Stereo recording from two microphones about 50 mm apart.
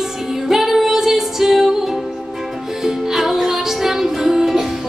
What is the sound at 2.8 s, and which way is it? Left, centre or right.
Music, centre.